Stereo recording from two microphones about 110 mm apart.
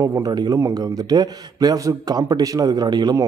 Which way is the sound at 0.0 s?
30° right (ahead or behind).